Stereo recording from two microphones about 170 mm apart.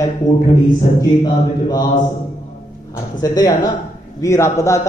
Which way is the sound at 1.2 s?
25° left (ahead or behind).